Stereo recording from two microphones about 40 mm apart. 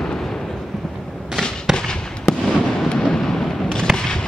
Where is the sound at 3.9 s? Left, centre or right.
Centre.